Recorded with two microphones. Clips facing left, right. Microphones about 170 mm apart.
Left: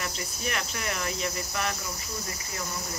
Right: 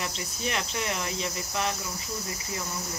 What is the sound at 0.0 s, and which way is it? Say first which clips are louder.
Speech: right 1 dB; 25° right (ahead or behind).